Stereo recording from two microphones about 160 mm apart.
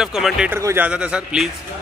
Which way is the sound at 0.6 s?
20° right (ahead or behind).